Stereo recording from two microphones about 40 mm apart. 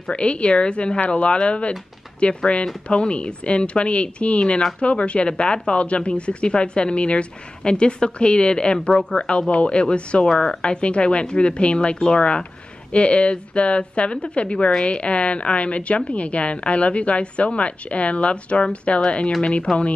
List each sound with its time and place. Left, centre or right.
0.0 s a woman's voice: left